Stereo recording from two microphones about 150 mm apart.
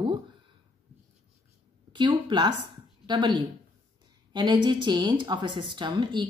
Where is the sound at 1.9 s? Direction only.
30° right (ahead or behind).